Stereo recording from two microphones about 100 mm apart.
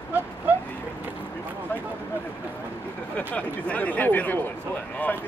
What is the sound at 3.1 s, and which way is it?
Speech, 15° left (ahead or behind).